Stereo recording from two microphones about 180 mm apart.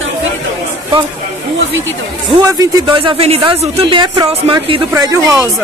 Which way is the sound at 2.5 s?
25° right (ahead or behind).